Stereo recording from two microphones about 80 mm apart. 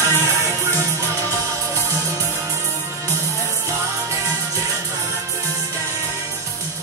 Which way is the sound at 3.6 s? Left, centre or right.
Right.